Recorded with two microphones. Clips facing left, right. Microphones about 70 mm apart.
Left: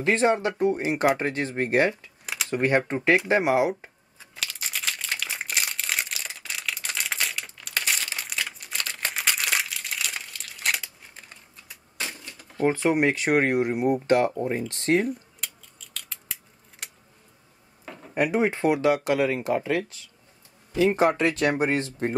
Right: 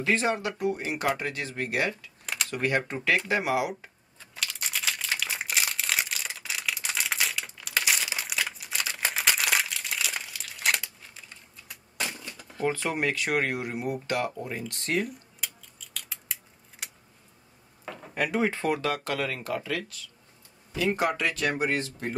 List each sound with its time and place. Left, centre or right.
0.0 s speech: left
4.4 s crumpling: centre
12.6 s speech: left
15.4 s scissors: centre
16.8 s a sound: centre
18.1 s speech: left